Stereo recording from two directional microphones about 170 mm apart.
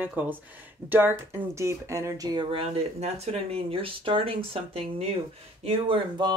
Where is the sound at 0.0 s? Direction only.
10° right (ahead or behind).